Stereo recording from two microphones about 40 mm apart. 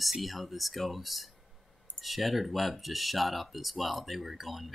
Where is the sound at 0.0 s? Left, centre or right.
Centre.